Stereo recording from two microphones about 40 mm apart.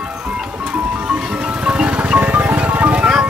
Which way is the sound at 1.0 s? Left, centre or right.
Right.